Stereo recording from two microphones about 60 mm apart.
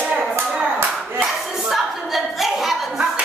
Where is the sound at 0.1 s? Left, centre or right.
Centre.